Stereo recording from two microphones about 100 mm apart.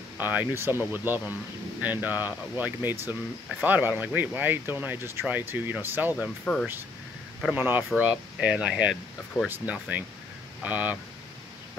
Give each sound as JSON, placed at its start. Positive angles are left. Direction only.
{"t": 0.2, "sound": "speech", "side_deg": -20}
{"t": 6.5, "sound": "speech", "side_deg": 5}
{"t": 7.5, "sound": "speech", "side_deg": -20}